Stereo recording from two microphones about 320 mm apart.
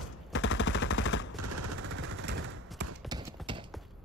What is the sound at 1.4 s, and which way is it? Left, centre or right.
Machine gun, right.